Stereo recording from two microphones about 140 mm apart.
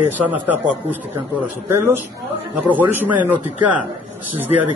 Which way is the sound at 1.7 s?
15° right (ahead or behind).